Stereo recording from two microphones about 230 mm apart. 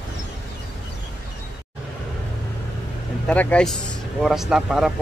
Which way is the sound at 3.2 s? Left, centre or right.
Centre.